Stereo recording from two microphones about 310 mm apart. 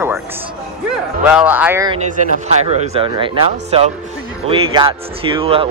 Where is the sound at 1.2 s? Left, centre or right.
Centre.